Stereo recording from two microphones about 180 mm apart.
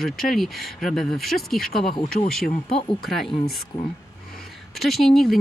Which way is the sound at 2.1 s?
45° left (ahead or behind).